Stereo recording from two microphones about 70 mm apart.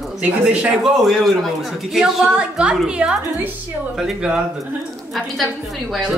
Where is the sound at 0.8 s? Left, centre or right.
Centre.